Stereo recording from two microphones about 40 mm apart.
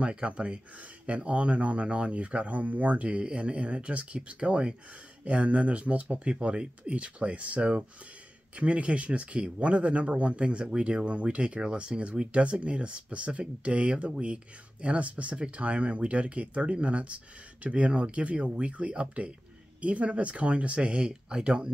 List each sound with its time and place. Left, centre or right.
0.0 s speech: right